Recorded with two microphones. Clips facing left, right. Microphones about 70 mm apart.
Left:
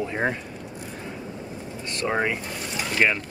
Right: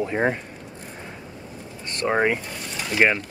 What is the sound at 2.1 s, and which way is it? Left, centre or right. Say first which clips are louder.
Speech: right 4 dB; centre.